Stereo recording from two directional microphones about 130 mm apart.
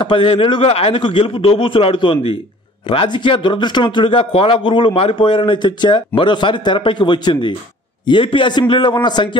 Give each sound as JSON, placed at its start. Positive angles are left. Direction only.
{"t": 0.0, "sound": "a man's voice", "side_deg": 40}